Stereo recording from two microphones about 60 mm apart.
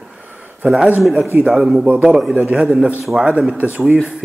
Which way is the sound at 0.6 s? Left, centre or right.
Right.